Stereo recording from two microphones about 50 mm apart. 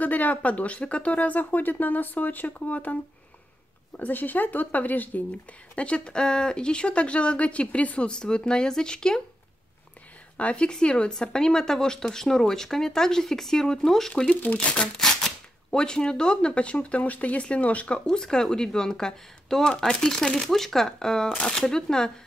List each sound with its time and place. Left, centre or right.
0.0 s speech: left
4.0 s speech: left
5.8 s speech: left
8.1 s speech: centre
10.3 s speech: left; by 14.2 s centre
14.2 s speech: left
14.7 s speech: left